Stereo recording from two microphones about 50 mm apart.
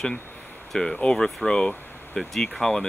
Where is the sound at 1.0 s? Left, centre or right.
Centre.